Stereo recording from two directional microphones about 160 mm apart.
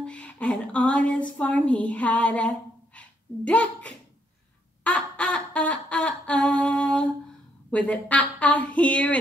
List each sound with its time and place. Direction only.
0.0 s a woman's voice: 5° left (ahead or behind)
4.8 s a sound: 10° left (ahead or behind)
7.7 s a woman's voice: 10° left (ahead or behind)